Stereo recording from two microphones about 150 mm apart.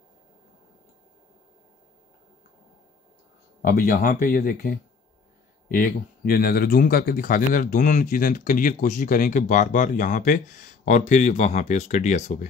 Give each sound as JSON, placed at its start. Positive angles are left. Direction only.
{"t": 3.6, "sound": "speech", "side_deg": 80}